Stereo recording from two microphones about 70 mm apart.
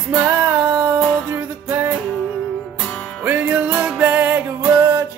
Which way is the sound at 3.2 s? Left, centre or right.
Right.